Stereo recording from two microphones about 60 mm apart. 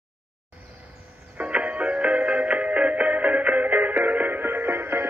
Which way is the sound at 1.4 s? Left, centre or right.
Centre.